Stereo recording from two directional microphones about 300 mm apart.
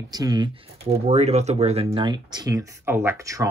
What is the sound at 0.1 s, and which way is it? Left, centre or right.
Speech, centre.